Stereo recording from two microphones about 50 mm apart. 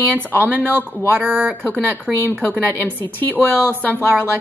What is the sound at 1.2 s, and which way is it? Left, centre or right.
Speech, right.